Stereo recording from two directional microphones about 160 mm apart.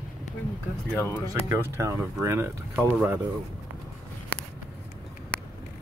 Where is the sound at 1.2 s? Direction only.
20° right (ahead or behind).